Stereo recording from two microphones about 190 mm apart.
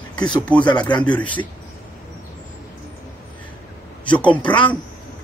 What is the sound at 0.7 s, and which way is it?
Speech, 25° left (ahead or behind).